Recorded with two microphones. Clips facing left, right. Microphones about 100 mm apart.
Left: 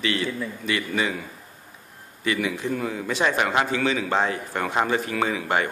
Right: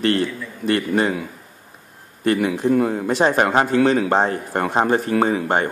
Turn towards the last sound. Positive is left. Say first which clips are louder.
# right 5 dB
turn(degrees=-40)  # may be behind; listen again after turning